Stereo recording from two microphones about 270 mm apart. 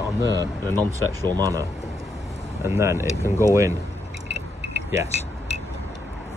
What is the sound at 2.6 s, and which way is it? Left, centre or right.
Speech, centre.